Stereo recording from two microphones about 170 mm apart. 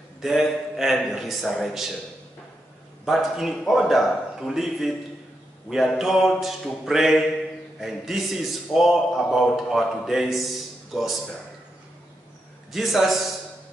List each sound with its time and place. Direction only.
0.2 s a man's voice: centre (ahead or behind)
3.1 s a man's voice: centre (ahead or behind)
12.7 s a man's voice: centre (ahead or behind)